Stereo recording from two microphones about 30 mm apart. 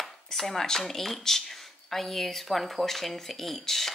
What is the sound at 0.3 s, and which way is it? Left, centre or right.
Speech, centre.